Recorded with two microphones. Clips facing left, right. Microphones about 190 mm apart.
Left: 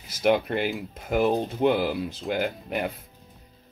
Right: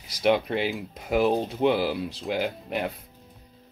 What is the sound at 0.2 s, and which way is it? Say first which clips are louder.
Speech: even; 5° left (ahead or behind).